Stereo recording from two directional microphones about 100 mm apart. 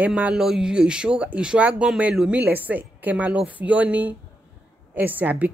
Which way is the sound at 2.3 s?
20° right (ahead or behind).